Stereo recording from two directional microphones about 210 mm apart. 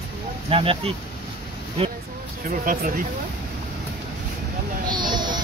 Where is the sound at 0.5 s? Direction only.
25° right (ahead or behind).